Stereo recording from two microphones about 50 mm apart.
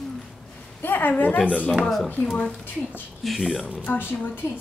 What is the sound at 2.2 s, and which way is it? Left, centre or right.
Speech, centre.